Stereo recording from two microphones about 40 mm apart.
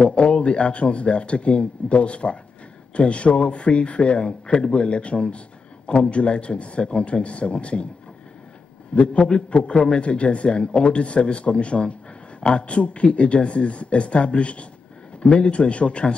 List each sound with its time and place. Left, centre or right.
0.0 s a man's voice: left
8.9 s a man's voice: left